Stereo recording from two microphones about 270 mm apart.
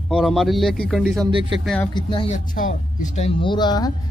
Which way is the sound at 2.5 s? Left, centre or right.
Left.